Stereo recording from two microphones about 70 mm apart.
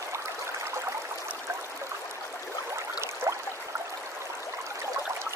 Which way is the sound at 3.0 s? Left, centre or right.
Right.